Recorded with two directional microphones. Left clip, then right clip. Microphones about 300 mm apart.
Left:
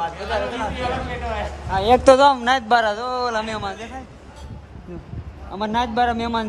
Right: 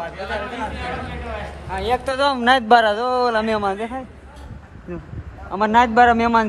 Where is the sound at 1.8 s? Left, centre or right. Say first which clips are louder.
Left 9 dB; left.